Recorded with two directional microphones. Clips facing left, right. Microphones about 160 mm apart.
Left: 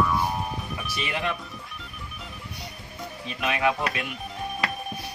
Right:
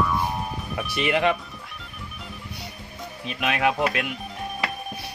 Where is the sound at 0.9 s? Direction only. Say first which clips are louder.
Right 8 dB; 65° right (ahead or behind).